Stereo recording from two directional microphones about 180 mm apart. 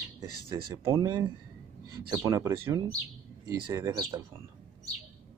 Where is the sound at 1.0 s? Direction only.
20° right (ahead or behind).